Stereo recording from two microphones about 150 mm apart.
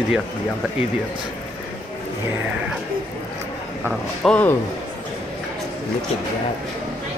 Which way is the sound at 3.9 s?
5° left (ahead or behind).